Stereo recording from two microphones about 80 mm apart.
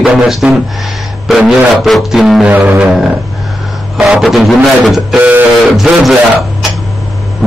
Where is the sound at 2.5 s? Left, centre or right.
Right.